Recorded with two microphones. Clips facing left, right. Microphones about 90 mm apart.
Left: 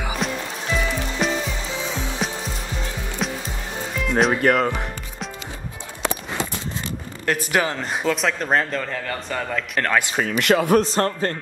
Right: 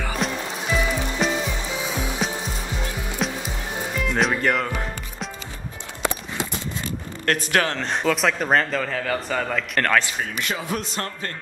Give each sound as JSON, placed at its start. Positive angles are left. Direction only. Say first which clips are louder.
{"t": 0.2, "sound": "music", "louder": "even", "side_deg": -5}
{"t": 1.5, "sound": "music", "louder": "even", "side_deg": -15}
{"t": 2.1, "sound": "music", "louder": "even", "side_deg": 0}
{"t": 3.9, "sound": "speech", "louder": "left 3 dB", "side_deg": 0}
{"t": 7.2, "sound": "speech", "louder": "even", "side_deg": 10}
{"t": 10.4, "sound": "speech", "louder": "left 13 dB", "side_deg": 65}
{"t": 10.8, "sound": "speech", "louder": "left 9 dB", "side_deg": 40}